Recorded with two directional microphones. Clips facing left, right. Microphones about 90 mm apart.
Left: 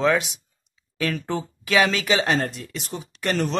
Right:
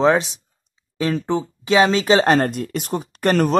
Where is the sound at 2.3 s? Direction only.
50° right (ahead or behind).